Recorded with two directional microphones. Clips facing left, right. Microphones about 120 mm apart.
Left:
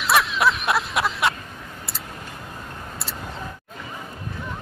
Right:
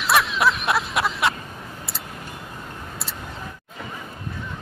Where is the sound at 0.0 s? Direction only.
Centre (ahead or behind).